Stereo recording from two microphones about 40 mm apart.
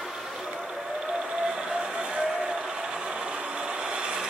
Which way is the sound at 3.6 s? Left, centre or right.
Centre.